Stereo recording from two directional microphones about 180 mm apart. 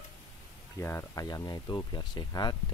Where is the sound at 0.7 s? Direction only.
15° left (ahead or behind).